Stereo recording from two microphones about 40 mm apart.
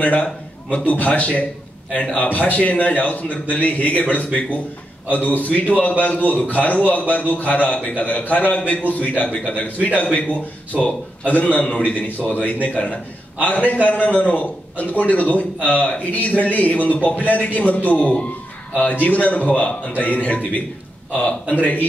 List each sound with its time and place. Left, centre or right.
0.0 s a man's voice: left
2.1 s a man's voice: left
10.7 s a man's voice: centre
11.2 s a man's voice: left